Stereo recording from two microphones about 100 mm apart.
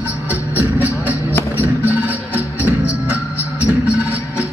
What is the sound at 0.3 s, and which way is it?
Music, 15° right (ahead or behind).